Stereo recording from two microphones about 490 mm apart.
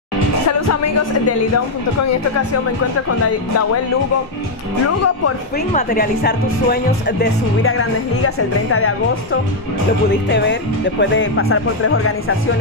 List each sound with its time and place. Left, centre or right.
4.8 s speech: left
5.7 s speech: centre